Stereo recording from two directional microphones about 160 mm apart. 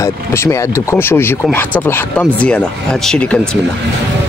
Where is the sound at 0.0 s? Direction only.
15° left (ahead or behind).